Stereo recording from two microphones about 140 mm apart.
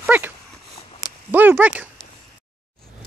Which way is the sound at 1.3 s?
10° right (ahead or behind).